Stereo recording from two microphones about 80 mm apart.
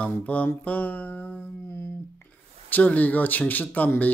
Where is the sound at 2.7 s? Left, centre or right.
Centre.